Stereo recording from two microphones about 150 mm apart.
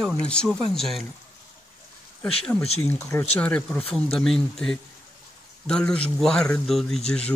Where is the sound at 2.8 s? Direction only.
15° left (ahead or behind).